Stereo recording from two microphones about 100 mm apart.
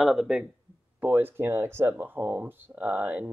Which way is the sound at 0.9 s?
20° right (ahead or behind).